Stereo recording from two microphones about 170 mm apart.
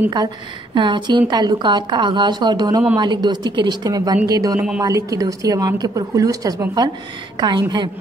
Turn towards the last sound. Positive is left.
turn(degrees=-25)  # may be behind; listen again after turning